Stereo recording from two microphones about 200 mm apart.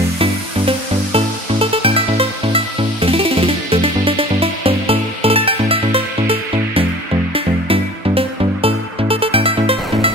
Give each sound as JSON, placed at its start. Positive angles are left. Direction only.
{"t": 0.2, "sound": "music", "side_deg": -30}